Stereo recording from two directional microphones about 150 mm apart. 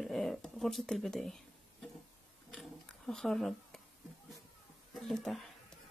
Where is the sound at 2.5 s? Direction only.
5° left (ahead or behind).